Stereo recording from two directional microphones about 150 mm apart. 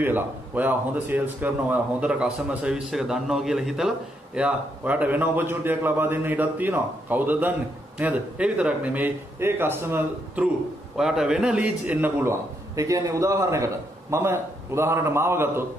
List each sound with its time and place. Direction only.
0.0 s a man's voice: 10° right (ahead or behind)